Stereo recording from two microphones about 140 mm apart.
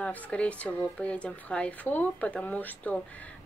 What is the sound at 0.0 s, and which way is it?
Speech, 10° left (ahead or behind).